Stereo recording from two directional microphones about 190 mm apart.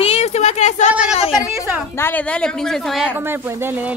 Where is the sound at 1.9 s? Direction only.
10° left (ahead or behind).